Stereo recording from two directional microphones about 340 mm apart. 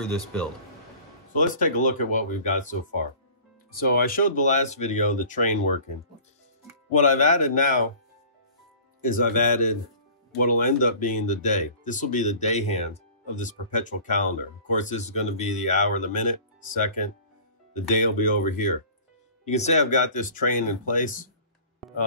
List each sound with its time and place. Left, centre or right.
0.1 s a man's voice: centre
1.3 s speech: left
3.8 s speech: left
7.0 s speech: left
9.0 s speech: left
18.1 s speech: left